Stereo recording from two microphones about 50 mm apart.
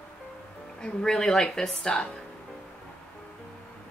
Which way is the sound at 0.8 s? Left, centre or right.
Centre.